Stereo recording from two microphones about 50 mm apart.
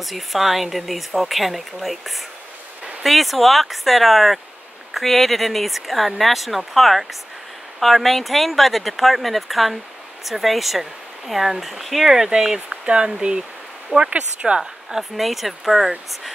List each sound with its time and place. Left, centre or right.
0.0 s speech: centre; by 14.6 s right
14.6 s speech: centre